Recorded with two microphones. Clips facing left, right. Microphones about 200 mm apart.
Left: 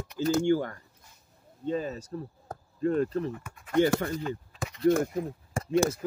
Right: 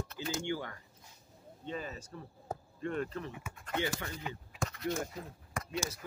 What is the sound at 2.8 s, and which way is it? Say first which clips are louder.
Speech: left 11 dB; 35° left (ahead or behind).